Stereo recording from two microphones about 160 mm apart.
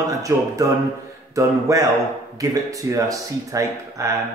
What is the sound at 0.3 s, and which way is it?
Speech, 20° right (ahead or behind).